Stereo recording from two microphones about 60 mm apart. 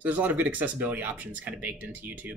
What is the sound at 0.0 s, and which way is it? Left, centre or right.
Speech, right.